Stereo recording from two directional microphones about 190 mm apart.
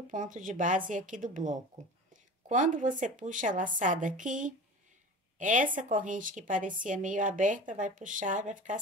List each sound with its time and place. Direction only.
0.1 s a woman's voice: 45° right (ahead or behind)